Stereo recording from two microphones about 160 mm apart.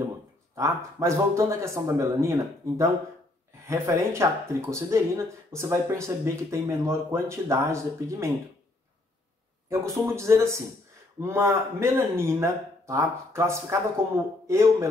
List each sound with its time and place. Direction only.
0.6 s speech: 15° right (ahead or behind)
9.7 s speech: 15° right (ahead or behind)